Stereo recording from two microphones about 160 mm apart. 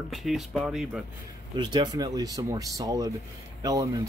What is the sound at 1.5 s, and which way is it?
Speech, 30° right (ahead or behind).